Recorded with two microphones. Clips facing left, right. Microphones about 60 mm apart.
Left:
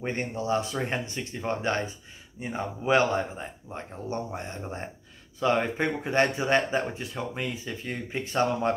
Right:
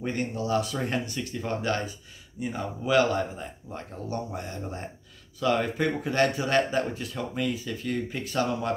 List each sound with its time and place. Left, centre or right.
0.0 s speech: left